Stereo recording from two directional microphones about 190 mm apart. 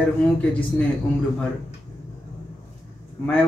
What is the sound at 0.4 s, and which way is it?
Speech, 5° left (ahead or behind).